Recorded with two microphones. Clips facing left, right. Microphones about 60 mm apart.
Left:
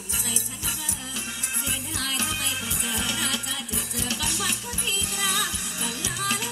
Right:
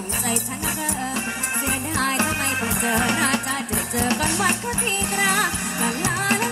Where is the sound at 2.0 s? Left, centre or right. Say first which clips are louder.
Right 9 dB; right.